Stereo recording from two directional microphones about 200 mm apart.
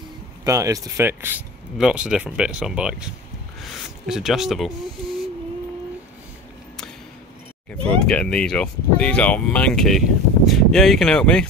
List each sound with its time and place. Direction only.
0.5 s speech: 15° right (ahead or behind)
4.1 s speech: centre (ahead or behind)
7.7 s speech: 5° left (ahead or behind)